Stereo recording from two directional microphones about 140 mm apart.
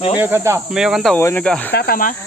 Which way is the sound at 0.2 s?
15° right (ahead or behind).